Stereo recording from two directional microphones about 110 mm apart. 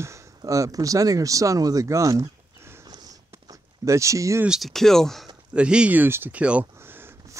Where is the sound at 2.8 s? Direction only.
40° right (ahead or behind).